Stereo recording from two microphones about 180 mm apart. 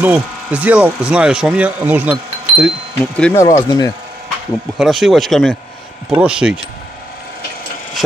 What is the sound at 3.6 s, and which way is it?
Speech, 20° left (ahead or behind).